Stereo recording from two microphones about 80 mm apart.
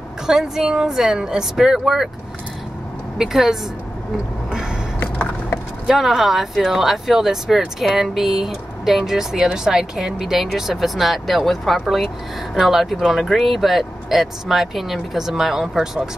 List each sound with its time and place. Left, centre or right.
0.3 s speech: centre
3.2 s speech: centre
5.0 s a sound: left
5.9 s speech: centre